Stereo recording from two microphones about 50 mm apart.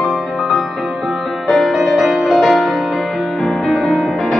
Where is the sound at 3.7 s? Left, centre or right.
Centre.